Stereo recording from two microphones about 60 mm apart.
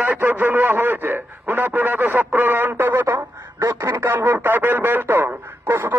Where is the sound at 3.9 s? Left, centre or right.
Right.